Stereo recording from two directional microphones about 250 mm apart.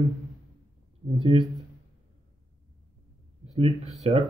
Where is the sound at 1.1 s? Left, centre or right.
Right.